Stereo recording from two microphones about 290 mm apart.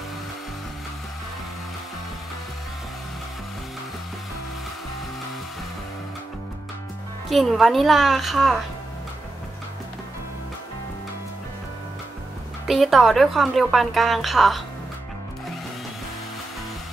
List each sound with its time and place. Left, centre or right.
7.2 s a woman's voice: centre
12.6 s a woman's voice: centre